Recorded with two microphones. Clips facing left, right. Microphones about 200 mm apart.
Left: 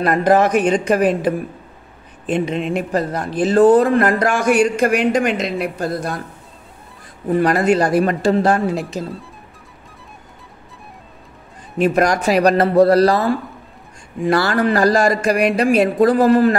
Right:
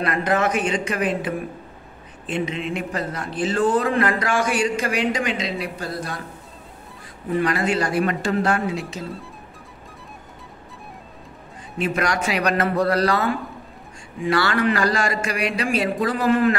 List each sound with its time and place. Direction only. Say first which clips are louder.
0.0 s a man's voice: left 7 dB; 40° left (ahead or behind)
7.2 s a man's voice: left 6 dB; 40° left (ahead or behind)
11.8 s a man's voice: left 7 dB; 40° left (ahead or behind)